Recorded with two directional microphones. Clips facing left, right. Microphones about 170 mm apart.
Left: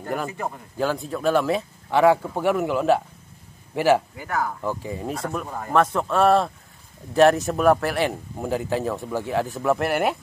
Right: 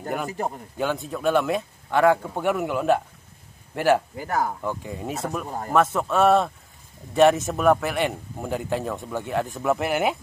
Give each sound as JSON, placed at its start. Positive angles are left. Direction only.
{"t": 0.0, "sound": "speech", "side_deg": -5}
{"t": 4.2, "sound": "speech", "side_deg": -35}
{"t": 4.6, "sound": "speech", "side_deg": 0}